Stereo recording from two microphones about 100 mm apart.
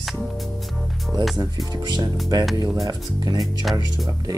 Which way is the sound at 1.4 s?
40° right (ahead or behind).